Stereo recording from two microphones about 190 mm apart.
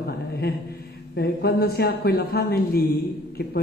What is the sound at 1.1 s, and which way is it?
Speech, 55° left (ahead or behind).